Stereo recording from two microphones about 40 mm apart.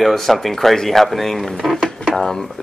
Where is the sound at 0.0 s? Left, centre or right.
Centre.